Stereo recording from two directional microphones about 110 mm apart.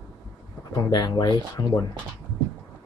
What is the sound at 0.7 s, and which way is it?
Speech, 35° left (ahead or behind).